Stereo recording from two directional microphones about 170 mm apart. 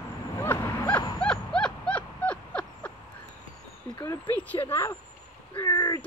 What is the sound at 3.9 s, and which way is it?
Vehicle, 20° left (ahead or behind).